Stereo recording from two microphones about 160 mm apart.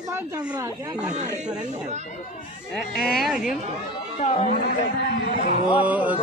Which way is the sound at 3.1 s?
Centre (ahead or behind).